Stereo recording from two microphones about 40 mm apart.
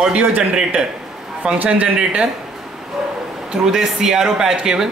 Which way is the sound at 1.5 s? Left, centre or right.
Right.